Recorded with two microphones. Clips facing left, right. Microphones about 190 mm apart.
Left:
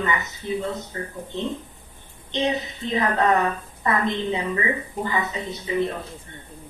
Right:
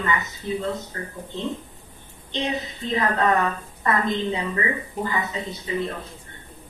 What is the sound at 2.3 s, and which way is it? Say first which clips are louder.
Speech: left 3 dB; 20° left (ahead or behind).